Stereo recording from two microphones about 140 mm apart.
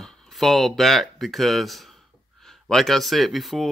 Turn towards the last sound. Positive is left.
turn(degrees=0)  # may be behind; listen again after turning